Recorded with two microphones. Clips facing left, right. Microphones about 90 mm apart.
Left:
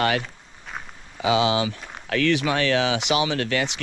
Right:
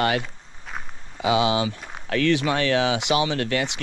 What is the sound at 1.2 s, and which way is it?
Speech, 25° right (ahead or behind).